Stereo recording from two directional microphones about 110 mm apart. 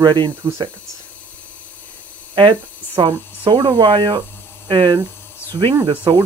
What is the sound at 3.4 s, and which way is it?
Speech, 45° right (ahead or behind).